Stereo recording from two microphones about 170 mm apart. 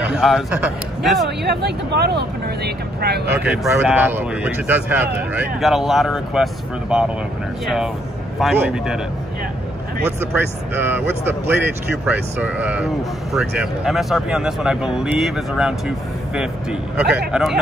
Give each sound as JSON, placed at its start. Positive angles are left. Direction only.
{"t": 0.2, "sound": "speech", "side_deg": -5}
{"t": 1.2, "sound": "speech", "side_deg": -75}
{"t": 3.3, "sound": "speech", "side_deg": -10}
{"t": 10.3, "sound": "speech", "side_deg": -10}
{"t": 17.3, "sound": "speech", "side_deg": 0}